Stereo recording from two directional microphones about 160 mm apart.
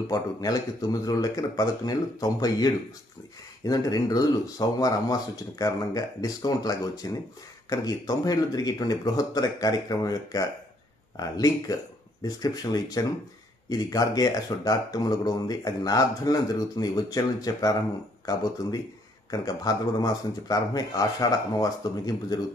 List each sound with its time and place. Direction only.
0.1 s speech: 20° left (ahead or behind)